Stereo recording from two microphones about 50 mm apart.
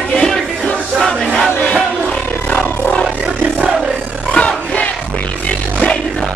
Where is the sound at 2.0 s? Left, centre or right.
Left.